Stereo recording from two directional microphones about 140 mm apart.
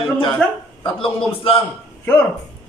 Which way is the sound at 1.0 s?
40° left (ahead or behind).